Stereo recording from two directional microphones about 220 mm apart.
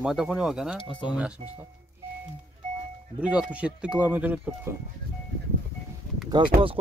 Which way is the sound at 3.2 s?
5° right (ahead or behind).